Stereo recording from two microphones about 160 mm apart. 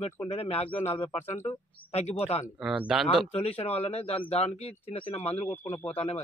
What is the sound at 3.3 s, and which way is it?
Speech, 40° left (ahead or behind).